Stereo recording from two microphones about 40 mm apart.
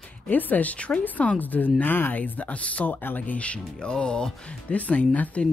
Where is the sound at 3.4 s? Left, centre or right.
Left.